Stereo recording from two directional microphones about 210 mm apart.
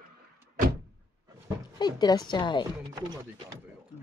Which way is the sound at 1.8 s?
20° left (ahead or behind).